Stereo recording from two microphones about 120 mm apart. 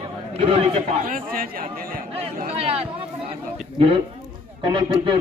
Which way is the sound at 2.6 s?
55° right (ahead or behind).